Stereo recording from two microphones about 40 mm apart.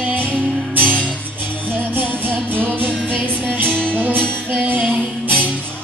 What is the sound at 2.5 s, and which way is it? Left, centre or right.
Music, right.